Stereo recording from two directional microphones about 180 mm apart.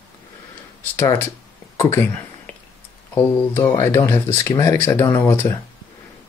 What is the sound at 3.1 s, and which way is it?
Speech, 15° left (ahead or behind).